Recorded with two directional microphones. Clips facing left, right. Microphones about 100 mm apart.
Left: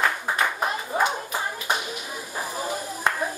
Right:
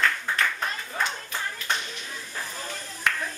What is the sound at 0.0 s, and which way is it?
Clapping, 20° left (ahead or behind).